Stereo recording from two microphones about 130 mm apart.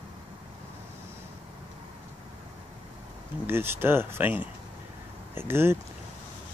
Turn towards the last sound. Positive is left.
turn(degrees=-20)  # may be behind; listen again after turning